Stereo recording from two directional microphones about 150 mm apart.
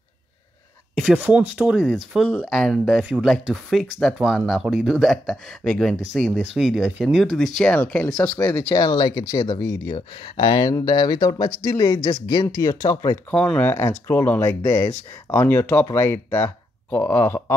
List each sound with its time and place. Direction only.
0.9 s speech: 5° right (ahead or behind); by 8.7 s 15° left (ahead or behind)
8.7 s speech: 25° left (ahead or behind)
13.3 s speech: 5° left (ahead or behind)